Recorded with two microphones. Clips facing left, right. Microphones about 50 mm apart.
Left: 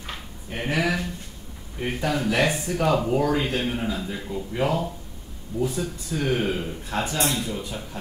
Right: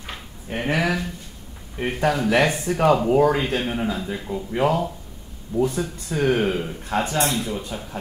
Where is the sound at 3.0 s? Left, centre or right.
Right.